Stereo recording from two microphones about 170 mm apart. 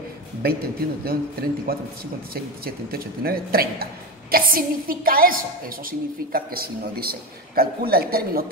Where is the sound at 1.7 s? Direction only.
60° right (ahead or behind).